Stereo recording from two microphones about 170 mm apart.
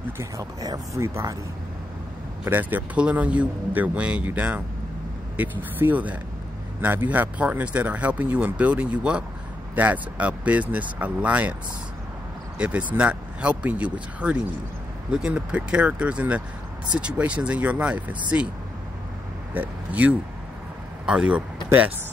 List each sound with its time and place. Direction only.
0.2 s speech: 20° right (ahead or behind)
2.4 s speech: 10° right (ahead or behind)
12.5 s speech: 5° right (ahead or behind)
19.5 s speech: 10° right (ahead or behind)